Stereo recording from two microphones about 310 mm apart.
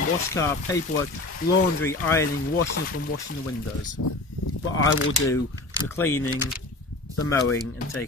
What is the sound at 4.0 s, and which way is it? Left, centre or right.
Speech, left.